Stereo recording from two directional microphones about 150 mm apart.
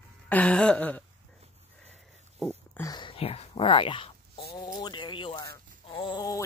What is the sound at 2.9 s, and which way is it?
Speech, 35° left (ahead or behind).